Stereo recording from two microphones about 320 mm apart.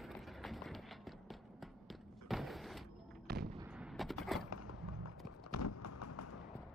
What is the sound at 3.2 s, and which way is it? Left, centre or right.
Artillery fire, right.